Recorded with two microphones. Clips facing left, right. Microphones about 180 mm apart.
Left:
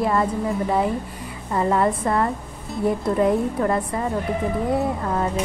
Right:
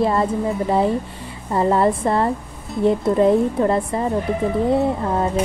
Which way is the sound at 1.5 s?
30° right (ahead or behind).